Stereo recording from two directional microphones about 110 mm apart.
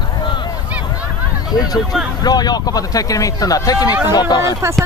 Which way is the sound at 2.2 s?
40° left (ahead or behind).